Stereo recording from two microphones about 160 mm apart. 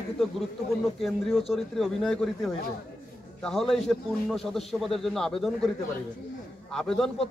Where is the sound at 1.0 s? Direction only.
Centre (ahead or behind).